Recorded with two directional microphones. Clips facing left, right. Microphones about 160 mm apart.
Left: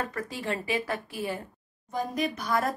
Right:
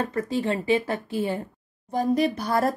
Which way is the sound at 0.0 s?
25° right (ahead or behind).